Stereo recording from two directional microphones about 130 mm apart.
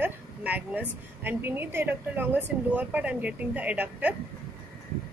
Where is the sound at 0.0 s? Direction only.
10° right (ahead or behind).